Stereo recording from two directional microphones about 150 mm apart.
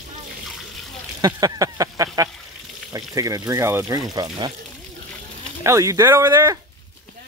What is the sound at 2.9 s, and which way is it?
Speech, 25° right (ahead or behind).